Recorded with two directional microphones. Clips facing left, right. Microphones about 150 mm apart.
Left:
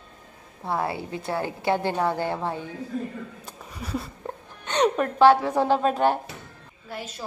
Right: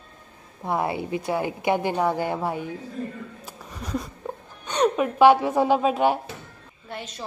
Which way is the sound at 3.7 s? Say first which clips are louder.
Right 1 dB; 10° left (ahead or behind).